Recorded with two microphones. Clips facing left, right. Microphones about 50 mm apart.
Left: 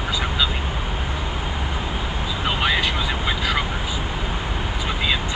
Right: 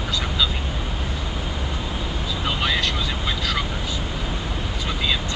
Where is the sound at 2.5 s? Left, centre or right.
Centre.